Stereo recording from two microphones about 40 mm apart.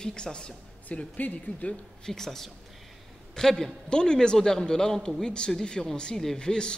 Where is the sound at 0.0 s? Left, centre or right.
Left.